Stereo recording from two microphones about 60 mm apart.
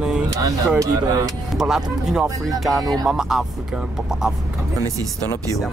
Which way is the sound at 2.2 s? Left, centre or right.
Right.